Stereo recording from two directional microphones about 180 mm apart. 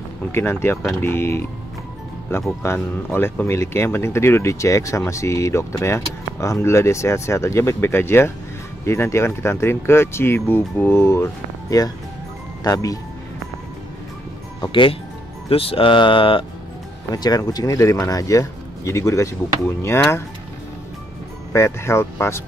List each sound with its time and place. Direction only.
0.3 s speech: 15° left (ahead or behind)
14.6 s speech: 30° left (ahead or behind)
21.5 s speech: 15° left (ahead or behind)